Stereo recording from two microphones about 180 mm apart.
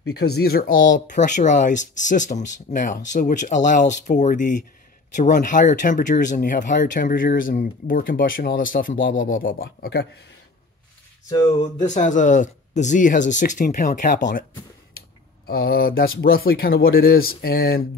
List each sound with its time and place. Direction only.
0.0 s speech: 65° left (ahead or behind)
11.8 s speech: 45° left (ahead or behind)
15.4 s speech: 60° left (ahead or behind)